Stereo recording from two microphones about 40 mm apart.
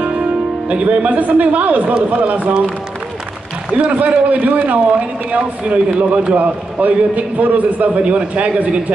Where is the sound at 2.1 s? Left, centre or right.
Right.